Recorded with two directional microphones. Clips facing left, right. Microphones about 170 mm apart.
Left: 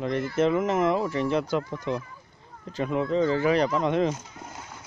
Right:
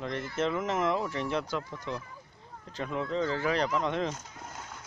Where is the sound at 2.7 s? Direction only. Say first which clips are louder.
Left 7 dB; 10° left (ahead or behind).